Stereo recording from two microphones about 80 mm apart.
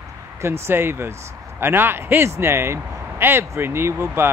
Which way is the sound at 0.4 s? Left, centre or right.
Right.